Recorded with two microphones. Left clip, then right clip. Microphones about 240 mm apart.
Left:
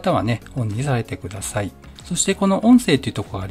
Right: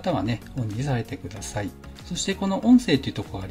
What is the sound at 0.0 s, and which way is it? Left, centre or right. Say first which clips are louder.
Speech: left 6 dB; left.